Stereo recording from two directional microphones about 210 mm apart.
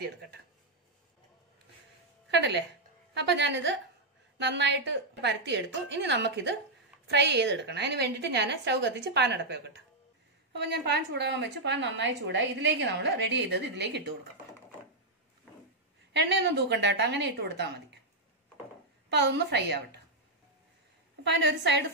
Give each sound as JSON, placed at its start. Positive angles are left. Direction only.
{"t": 2.3, "sound": "a woman's voice", "side_deg": -55}
{"t": 16.1, "sound": "a woman's voice", "side_deg": -55}
{"t": 19.0, "sound": "a woman's voice", "side_deg": -55}
{"t": 21.5, "sound": "a woman's voice", "side_deg": -55}